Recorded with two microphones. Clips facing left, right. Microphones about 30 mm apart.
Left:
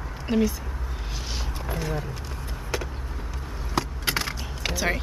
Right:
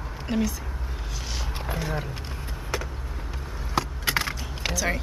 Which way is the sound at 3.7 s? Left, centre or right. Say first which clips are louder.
Right 1 dB; centre.